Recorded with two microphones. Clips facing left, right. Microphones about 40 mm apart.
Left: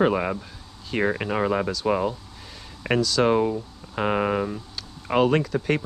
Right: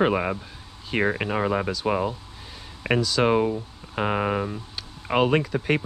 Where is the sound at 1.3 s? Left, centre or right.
Centre.